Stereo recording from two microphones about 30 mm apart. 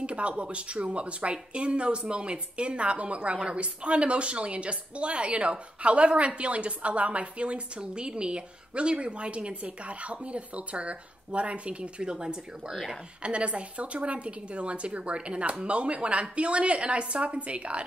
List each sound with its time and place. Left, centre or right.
0.0 s a woman's voice: right
12.0 s speech: right
12.7 s a woman's voice: centre
13.2 s a woman's voice: right